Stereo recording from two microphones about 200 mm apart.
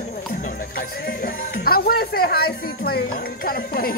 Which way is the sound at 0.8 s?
45° left (ahead or behind).